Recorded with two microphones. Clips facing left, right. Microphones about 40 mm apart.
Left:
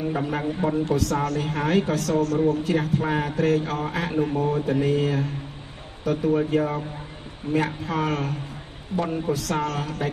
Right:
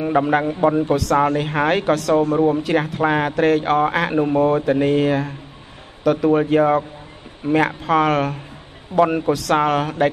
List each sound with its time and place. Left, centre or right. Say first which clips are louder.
0.0 s speech: right 8 dB; right
0.3 s speech: right 8 dB; right
0.6 s speech: right 7 dB; right
0.9 s speech: right 7 dB; right
2.1 s speech: right 3 dB; right
2.6 s speech: right 5 dB; right
4.1 s speech: right 7 dB; right